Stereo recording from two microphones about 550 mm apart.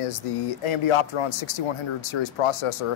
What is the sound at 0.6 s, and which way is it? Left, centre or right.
Speech, left.